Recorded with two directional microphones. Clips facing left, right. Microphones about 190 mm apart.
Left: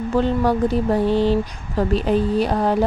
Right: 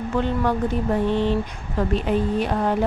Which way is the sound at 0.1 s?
35° left (ahead or behind).